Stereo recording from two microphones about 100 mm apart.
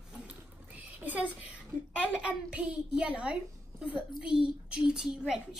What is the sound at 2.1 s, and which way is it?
A woman's voice, 10° right (ahead or behind).